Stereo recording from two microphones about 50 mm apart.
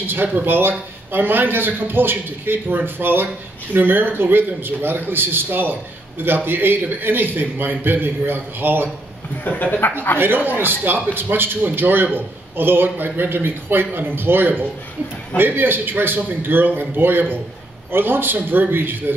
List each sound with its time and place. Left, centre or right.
0.0 s a man's voice: right
9.4 s speech: left
10.1 s a man's voice: right